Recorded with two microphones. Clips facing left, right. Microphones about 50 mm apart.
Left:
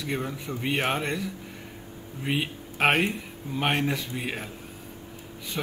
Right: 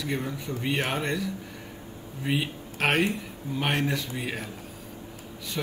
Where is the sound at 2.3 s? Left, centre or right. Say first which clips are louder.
Even; centre.